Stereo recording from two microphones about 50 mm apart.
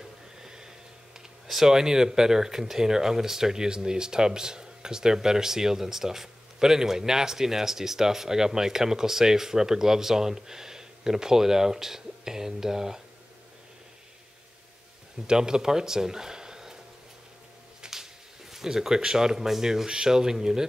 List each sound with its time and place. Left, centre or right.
0.0 s speech: centre
15.2 s speech: centre
17.8 s a sound: centre
18.5 s speech: centre